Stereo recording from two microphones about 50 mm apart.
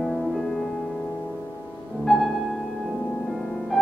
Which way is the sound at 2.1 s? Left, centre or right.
Centre.